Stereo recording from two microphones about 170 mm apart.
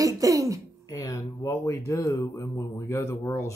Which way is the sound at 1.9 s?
15° left (ahead or behind).